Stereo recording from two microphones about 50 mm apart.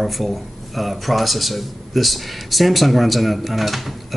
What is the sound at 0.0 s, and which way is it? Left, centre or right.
Speech, centre.